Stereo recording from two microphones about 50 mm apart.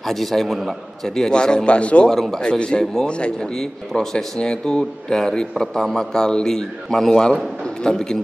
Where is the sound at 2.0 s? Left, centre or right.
Centre.